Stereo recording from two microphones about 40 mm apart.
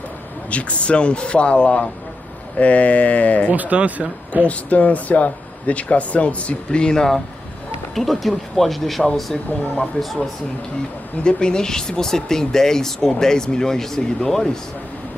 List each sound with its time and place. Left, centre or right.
0.5 s speech: left
3.5 s speech: right
4.5 s speech: left
6.7 s speech: centre
7.9 s speech: centre
11.2 s speech: left